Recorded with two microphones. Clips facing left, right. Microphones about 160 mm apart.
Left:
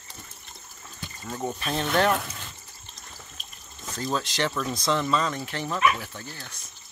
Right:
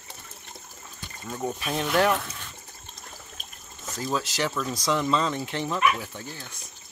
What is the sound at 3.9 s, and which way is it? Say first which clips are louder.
Speech: even; 5° right (ahead or behind).